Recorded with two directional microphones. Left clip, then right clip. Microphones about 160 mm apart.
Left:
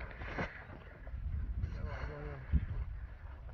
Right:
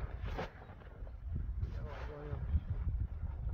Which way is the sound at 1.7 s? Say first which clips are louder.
Left 2 dB; 40° right (ahead or behind).